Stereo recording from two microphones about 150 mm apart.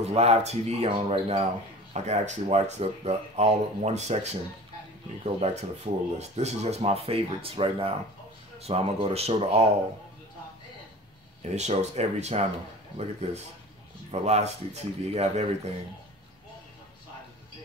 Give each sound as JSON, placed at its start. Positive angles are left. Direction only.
{"t": 0.0, "sound": "speech", "side_deg": -45}
{"t": 2.0, "sound": "speech", "side_deg": -50}
{"t": 11.4, "sound": "speech", "side_deg": -50}